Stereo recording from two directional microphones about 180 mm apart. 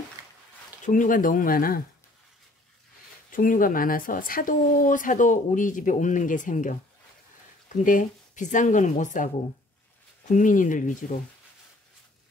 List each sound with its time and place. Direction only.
0.8 s speech: 45° left (ahead or behind)
3.3 s speech: 50° left (ahead or behind)